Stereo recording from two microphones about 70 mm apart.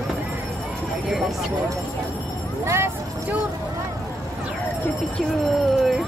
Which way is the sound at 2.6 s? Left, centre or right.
Right.